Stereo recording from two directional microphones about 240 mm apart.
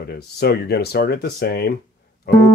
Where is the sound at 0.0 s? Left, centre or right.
Left.